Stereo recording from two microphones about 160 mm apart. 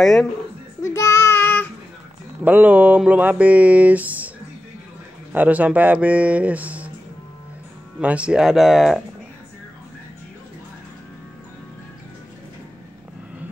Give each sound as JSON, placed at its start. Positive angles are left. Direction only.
{"t": 0.0, "sound": "speech", "side_deg": 0}
{"t": 0.9, "sound": "child singing", "side_deg": 20}
{"t": 2.4, "sound": "speech", "side_deg": -10}
{"t": 5.3, "sound": "speech", "side_deg": -10}
{"t": 8.0, "sound": "speech", "side_deg": -10}